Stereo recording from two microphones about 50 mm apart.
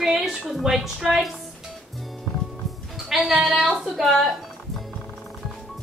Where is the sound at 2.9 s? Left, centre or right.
Centre.